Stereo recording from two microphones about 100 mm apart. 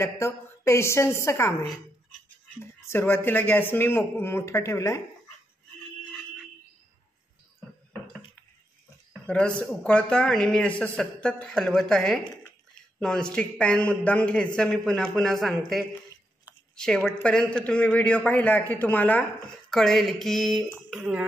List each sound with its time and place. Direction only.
0.0 s speech: 25° left (ahead or behind)
2.6 s speech: 25° left (ahead or behind)
9.2 s speech: 10° left (ahead or behind)
19.7 s speech: 5° left (ahead or behind)
21.0 s speech: 15° right (ahead or behind)